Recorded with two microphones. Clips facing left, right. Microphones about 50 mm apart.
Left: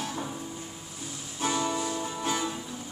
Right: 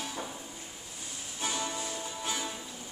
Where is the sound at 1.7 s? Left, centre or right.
Left.